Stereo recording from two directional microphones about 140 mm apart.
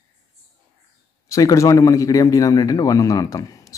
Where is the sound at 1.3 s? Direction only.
25° left (ahead or behind).